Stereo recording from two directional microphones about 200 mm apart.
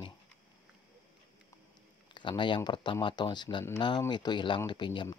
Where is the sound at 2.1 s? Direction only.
25° left (ahead or behind).